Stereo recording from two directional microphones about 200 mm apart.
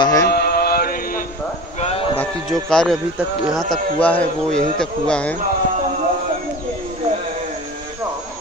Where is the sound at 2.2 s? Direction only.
5° left (ahead or behind).